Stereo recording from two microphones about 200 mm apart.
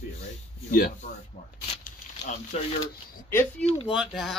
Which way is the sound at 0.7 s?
45° left (ahead or behind).